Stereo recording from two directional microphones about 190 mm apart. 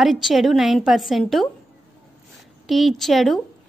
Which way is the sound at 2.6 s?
Centre (ahead or behind).